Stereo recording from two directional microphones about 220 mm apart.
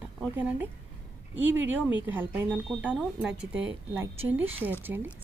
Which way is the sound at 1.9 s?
10° right (ahead or behind).